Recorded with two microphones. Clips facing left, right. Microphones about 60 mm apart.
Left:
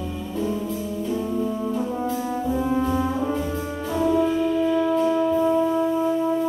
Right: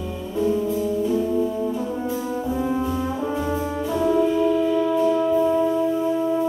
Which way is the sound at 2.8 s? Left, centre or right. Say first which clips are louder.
Left 2 dB; centre.